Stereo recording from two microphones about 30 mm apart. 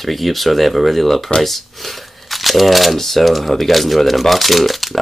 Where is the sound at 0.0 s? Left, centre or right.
Centre.